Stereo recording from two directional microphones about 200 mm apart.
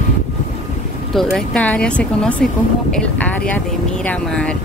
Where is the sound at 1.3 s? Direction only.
5° left (ahead or behind).